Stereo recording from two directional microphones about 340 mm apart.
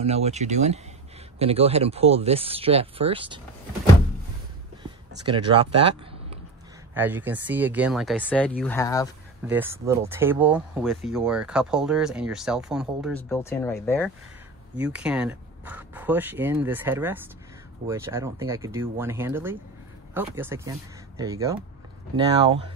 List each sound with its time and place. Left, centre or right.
0.0 s speech: centre
5.2 s speech: centre
6.9 s speech: centre
9.5 s speech: centre